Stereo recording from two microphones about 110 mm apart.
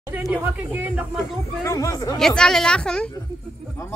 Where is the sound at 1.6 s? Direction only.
30° left (ahead or behind).